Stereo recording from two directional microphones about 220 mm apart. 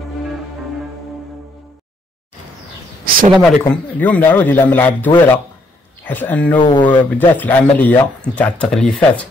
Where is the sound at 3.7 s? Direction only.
5° left (ahead or behind).